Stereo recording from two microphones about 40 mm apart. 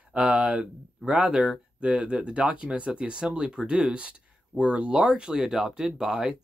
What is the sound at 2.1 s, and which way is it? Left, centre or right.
Speech, right.